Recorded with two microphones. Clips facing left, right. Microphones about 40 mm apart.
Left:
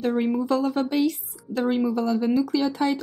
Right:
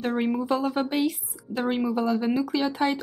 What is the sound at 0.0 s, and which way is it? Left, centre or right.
A woman's voice, centre.